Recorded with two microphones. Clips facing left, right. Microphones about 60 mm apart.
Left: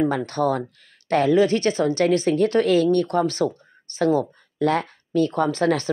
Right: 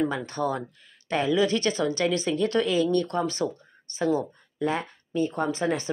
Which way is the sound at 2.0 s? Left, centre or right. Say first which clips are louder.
Left 6 dB; left.